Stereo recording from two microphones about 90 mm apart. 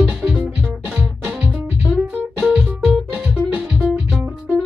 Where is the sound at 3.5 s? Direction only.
15° right (ahead or behind).